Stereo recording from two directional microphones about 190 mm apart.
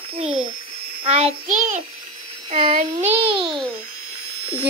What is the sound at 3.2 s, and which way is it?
Speech, 30° right (ahead or behind).